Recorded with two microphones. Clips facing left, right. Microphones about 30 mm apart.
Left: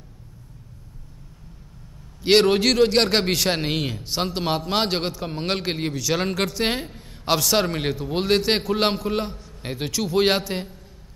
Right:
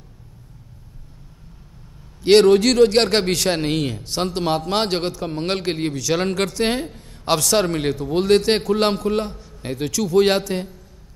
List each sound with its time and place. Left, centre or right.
2.2 s a man's voice: centre